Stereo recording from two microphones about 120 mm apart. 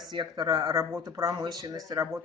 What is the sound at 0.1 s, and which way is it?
Speech, 35° right (ahead or behind).